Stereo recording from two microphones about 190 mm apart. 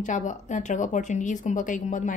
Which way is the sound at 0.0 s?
40° left (ahead or behind).